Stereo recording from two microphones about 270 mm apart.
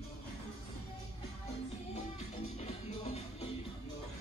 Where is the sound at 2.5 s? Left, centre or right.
Left.